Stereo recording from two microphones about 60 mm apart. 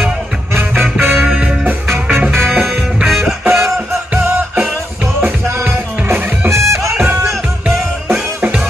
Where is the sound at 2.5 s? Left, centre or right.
Centre.